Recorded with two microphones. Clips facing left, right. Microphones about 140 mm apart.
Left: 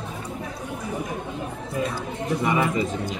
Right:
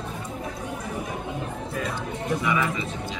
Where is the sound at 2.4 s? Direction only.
40° left (ahead or behind).